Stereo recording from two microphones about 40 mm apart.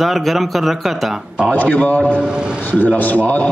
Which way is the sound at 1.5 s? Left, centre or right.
Left.